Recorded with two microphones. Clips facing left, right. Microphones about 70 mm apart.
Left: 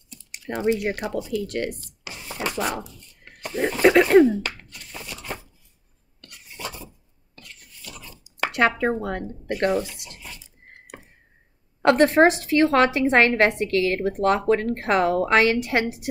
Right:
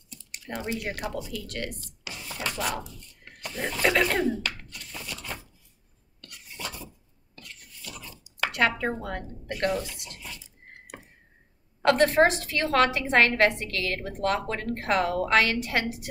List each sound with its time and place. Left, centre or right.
0.1 s speech: centre
3.3 s a sound: left
6.2 s filing: left
8.4 s speech: left
11.8 s a woman's voice: left